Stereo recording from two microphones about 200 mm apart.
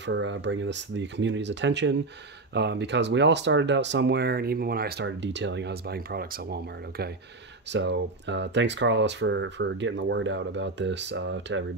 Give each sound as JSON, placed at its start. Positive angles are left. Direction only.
{"t": 0.0, "sound": "speech", "side_deg": -65}
{"t": 7.7, "sound": "speech", "side_deg": -65}